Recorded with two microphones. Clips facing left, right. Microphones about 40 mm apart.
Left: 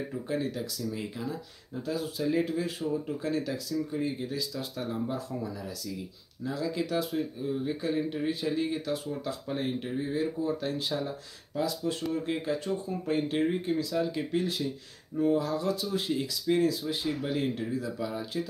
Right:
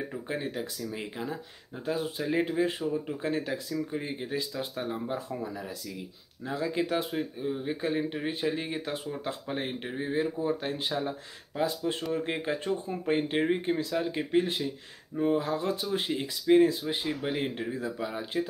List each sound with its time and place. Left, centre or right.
0.1 s speech: right